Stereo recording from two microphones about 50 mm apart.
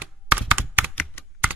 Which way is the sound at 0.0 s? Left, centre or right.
Right.